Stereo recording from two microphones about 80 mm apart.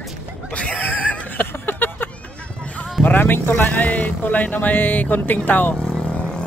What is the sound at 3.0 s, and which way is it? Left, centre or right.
Speech, left.